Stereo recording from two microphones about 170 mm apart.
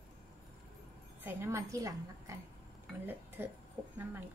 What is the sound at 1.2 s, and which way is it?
A woman's voice, 15° right (ahead or behind).